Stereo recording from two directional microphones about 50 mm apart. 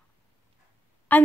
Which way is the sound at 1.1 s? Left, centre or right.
Left.